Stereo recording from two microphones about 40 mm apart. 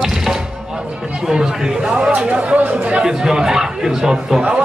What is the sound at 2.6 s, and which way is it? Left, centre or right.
Speech, right.